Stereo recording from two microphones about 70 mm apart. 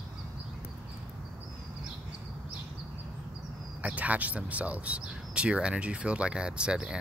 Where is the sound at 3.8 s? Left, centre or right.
Right.